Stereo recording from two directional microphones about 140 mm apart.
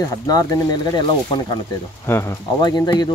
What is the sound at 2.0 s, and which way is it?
Speech, 20° left (ahead or behind).